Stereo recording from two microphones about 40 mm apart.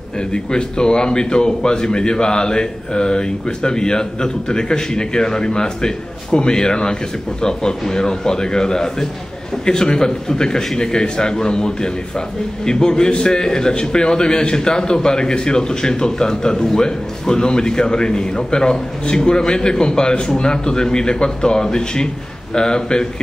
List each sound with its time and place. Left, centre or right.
0.3 s a man's voice: left